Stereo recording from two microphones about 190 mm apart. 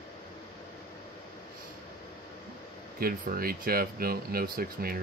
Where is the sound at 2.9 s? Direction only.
50° right (ahead or behind).